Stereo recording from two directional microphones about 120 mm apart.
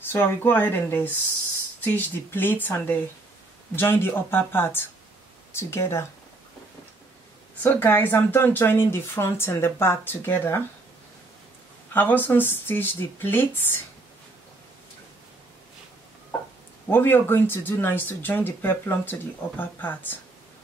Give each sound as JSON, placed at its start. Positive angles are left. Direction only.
{"t": 0.0, "sound": "speech", "side_deg": 15}
{"t": 7.6, "sound": "speech", "side_deg": 15}
{"t": 11.9, "sound": "speech", "side_deg": 15}
{"t": 16.8, "sound": "speech", "side_deg": 20}